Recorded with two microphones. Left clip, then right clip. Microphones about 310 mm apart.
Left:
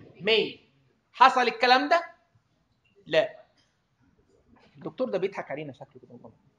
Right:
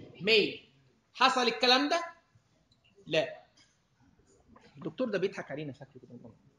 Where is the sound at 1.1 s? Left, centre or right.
Left.